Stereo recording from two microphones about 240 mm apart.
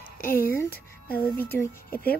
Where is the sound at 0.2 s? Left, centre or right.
Left.